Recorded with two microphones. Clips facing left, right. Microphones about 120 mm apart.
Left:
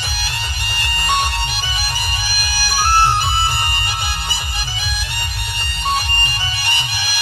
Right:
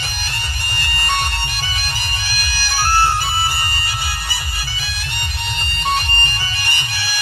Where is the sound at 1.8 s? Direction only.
10° left (ahead or behind).